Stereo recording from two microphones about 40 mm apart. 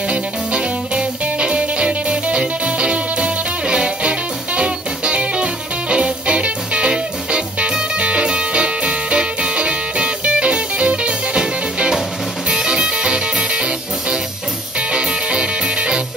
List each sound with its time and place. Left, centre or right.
0.1 s music: right